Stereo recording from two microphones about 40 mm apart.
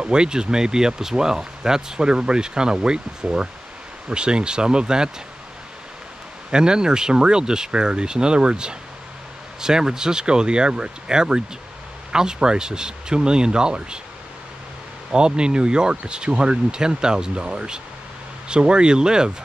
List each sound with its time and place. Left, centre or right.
0.0 s speech: right
6.5 s speech: centre
15.0 s speech: right